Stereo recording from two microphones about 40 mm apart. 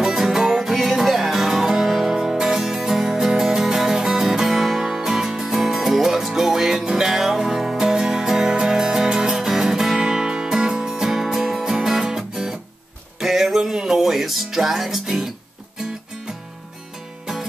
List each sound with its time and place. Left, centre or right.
0.0 s music: centre